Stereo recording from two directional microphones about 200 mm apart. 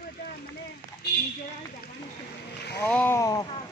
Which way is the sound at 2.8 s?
10° left (ahead or behind).